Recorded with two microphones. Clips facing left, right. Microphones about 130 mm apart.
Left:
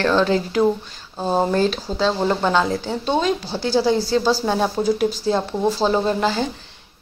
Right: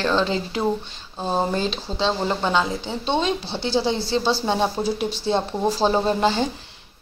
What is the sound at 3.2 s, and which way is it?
A woman's voice, 25° right (ahead or behind).